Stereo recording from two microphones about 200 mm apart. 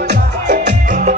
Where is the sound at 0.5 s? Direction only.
40° right (ahead or behind).